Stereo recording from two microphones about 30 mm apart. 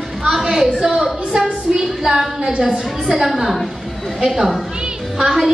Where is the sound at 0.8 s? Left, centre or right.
Right.